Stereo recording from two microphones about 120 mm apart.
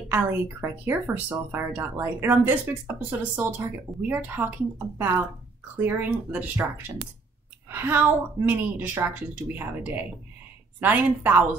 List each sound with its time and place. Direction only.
0.1 s speech: 20° right (ahead or behind)